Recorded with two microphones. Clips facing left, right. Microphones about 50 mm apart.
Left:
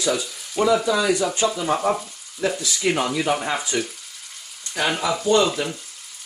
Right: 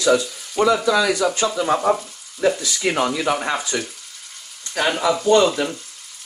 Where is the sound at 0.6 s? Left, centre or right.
Right.